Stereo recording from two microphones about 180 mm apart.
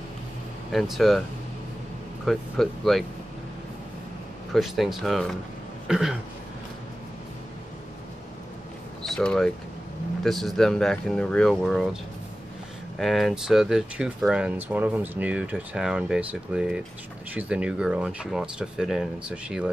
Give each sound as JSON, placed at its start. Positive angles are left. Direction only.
{"t": 0.7, "sound": "speech", "side_deg": 0}
{"t": 2.2, "sound": "speech", "side_deg": 0}
{"t": 4.6, "sound": "speech", "side_deg": 0}
{"t": 5.9, "sound": "a sound", "side_deg": -5}
{"t": 9.0, "sound": "speech", "side_deg": 5}